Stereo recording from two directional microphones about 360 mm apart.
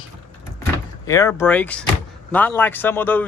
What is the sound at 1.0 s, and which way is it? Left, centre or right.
Speech, centre.